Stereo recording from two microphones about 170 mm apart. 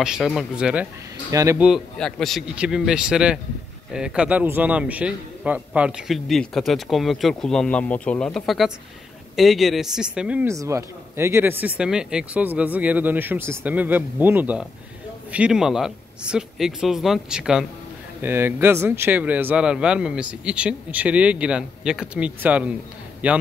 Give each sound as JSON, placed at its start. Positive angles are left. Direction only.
{"t": 0.0, "sound": "speech", "side_deg": -5}
{"t": 1.3, "sound": "speech", "side_deg": -20}
{"t": 1.6, "sound": "speech", "side_deg": 0}
{"t": 10.5, "sound": "speech", "side_deg": -20}